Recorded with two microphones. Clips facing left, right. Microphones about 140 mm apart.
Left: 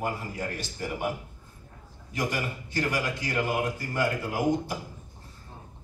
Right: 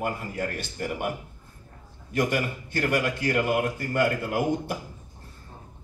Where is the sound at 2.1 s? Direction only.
55° right (ahead or behind).